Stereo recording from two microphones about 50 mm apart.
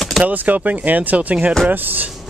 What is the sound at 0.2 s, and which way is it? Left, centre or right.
Speech, right.